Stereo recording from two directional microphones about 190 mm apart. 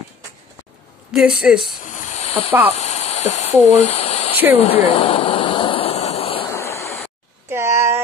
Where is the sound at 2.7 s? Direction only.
35° left (ahead or behind).